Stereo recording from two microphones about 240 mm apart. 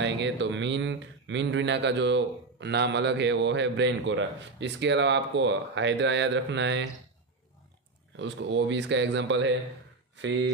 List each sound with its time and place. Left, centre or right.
0.0 s speech: right
8.2 s speech: right